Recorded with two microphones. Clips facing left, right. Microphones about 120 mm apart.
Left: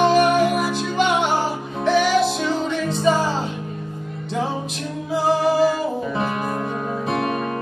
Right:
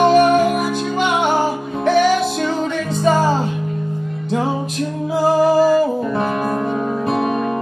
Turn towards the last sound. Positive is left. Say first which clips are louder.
# right 4 dB
turn(degrees=0)  # may be behind; listen again after turning